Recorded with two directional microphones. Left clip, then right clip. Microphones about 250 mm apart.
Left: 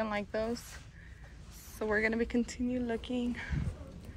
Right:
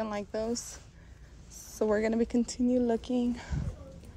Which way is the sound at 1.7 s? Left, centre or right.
Centre.